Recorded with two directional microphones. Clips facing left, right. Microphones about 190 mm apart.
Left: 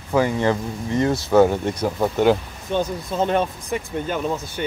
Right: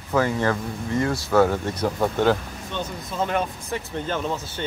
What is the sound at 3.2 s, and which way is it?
Speech, 30° left (ahead or behind).